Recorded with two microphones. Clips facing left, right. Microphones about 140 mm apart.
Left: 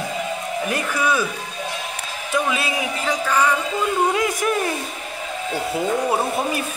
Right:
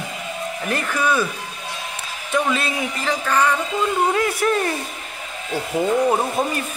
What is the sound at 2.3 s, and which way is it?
Speech, 10° left (ahead or behind).